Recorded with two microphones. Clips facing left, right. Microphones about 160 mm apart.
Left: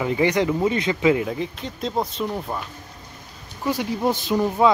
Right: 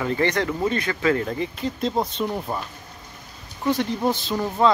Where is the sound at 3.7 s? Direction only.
10° left (ahead or behind).